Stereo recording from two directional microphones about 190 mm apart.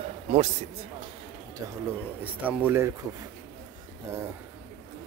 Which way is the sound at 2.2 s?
10° right (ahead or behind).